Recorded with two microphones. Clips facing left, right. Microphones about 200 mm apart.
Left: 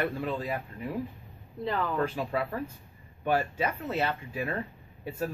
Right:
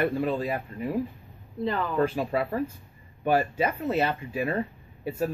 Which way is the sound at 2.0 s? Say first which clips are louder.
Right 4 dB; 10° right (ahead or behind).